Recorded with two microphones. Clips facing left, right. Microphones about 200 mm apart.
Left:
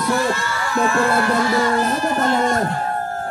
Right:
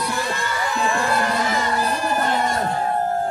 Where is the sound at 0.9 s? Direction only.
15° right (ahead or behind).